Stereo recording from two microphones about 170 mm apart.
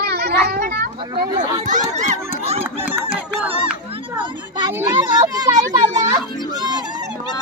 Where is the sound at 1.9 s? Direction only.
40° right (ahead or behind).